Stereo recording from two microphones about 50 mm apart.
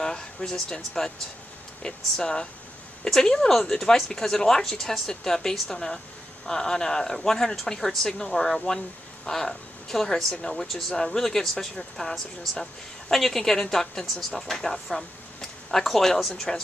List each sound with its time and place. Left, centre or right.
0.0 s speech: centre